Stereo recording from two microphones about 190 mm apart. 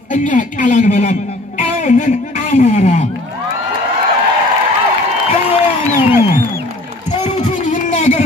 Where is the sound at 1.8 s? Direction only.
40° left (ahead or behind).